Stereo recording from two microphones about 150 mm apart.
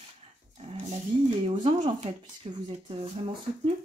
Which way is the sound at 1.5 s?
35° right (ahead or behind).